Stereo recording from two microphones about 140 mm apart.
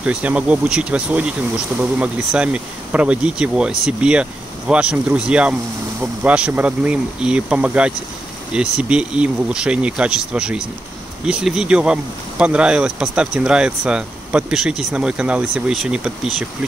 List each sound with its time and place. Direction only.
0.0 s speech: 10° right (ahead or behind)